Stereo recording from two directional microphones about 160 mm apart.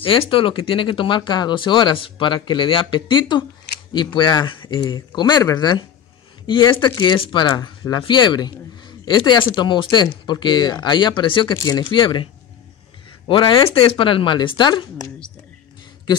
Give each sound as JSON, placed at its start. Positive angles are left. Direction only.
{"t": 0.0, "sound": "speech", "side_deg": 35}
{"t": 13.3, "sound": "speech", "side_deg": 30}